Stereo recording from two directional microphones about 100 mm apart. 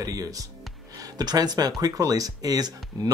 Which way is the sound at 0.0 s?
35° right (ahead or behind).